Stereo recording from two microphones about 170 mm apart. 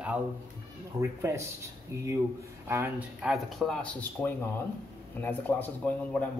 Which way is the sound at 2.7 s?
10° right (ahead or behind).